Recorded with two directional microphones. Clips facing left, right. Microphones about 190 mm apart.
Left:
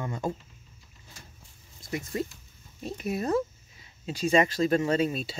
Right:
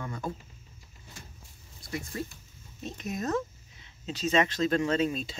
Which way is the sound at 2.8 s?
10° left (ahead or behind).